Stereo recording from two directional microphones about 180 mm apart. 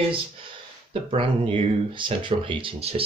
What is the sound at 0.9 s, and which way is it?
Speech, 30° right (ahead or behind).